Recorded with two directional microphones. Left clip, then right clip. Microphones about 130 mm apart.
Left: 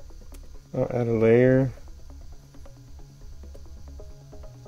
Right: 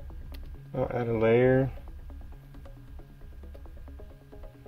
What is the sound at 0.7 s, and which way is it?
Speech, 60° left (ahead or behind).